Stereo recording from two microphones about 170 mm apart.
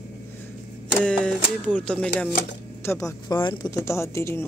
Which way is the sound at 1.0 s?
5° left (ahead or behind).